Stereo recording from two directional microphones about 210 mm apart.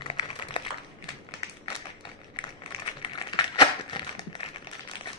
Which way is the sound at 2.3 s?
20° left (ahead or behind).